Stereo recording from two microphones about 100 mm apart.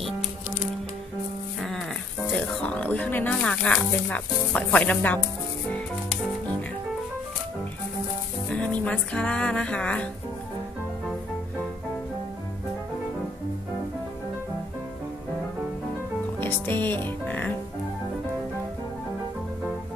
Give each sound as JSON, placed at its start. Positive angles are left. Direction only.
{"t": 1.6, "sound": "music", "side_deg": 0}
{"t": 2.3, "sound": "a sound", "side_deg": 15}
{"t": 3.3, "sound": "speech", "side_deg": 10}
{"t": 5.7, "sound": "music", "side_deg": 15}
{"t": 8.5, "sound": "speech", "side_deg": 10}
{"t": 16.3, "sound": "speech", "side_deg": 20}